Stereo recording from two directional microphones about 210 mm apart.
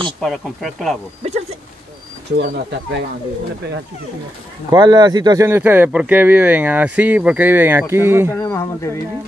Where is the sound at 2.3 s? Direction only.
50° right (ahead or behind).